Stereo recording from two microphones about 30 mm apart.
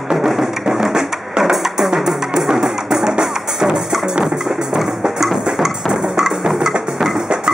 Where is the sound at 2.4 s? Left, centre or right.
Centre.